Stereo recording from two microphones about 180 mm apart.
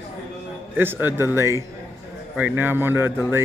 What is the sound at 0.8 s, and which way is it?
Speech, 10° right (ahead or behind).